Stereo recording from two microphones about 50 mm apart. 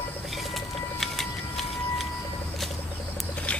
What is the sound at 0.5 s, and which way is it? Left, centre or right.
Bird, centre.